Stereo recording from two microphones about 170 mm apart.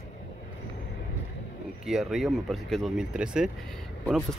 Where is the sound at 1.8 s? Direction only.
Centre (ahead or behind).